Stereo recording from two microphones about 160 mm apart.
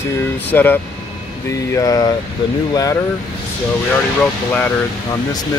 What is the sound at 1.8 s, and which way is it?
Speech, 25° left (ahead or behind).